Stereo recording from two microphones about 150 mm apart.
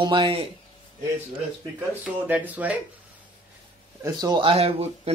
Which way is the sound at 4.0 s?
25° right (ahead or behind).